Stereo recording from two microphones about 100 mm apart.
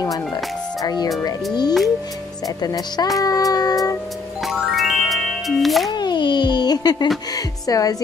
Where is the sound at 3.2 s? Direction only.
35° left (ahead or behind).